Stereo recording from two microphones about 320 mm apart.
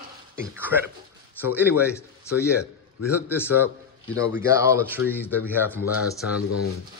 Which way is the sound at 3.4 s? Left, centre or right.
Centre.